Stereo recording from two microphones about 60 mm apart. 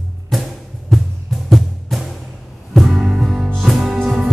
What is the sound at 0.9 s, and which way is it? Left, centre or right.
Music, centre.